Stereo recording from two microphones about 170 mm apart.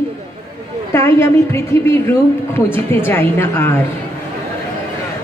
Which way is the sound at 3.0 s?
15° left (ahead or behind).